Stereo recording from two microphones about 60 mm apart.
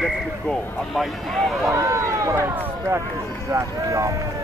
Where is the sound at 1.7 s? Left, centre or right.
Right.